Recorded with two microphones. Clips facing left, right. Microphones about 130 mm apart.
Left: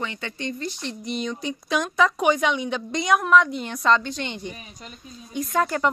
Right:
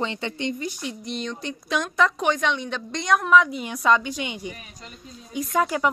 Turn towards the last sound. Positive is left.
turn(degrees=-5)  # may be behind; listen again after turning